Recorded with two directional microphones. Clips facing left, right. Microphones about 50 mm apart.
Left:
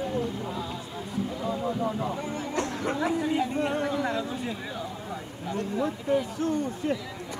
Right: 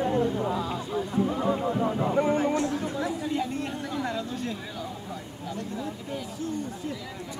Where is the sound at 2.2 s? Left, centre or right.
Right.